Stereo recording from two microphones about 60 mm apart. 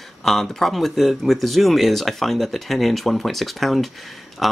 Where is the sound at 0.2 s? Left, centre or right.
Centre.